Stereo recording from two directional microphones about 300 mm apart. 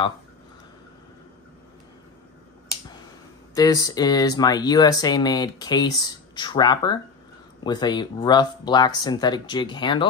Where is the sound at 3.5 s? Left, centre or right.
Centre.